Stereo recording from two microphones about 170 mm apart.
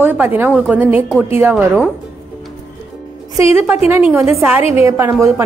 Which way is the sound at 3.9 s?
15° right (ahead or behind).